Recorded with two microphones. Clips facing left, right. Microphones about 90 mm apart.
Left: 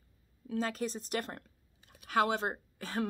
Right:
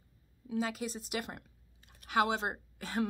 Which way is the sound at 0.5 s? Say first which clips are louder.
Left 1 dB; 10° right (ahead or behind).